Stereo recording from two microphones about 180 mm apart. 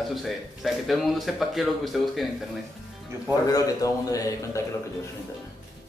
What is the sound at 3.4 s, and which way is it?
A man's voice, 20° left (ahead or behind).